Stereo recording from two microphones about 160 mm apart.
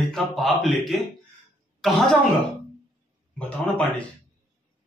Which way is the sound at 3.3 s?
10° left (ahead or behind).